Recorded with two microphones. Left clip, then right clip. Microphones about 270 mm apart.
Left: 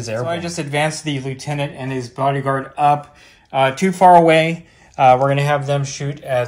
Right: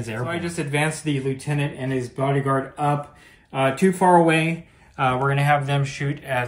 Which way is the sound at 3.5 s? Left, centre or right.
Left.